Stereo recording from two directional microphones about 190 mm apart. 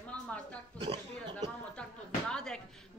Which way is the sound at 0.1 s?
5° left (ahead or behind).